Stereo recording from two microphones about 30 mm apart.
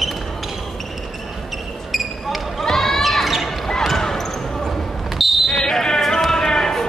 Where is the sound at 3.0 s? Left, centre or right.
Centre.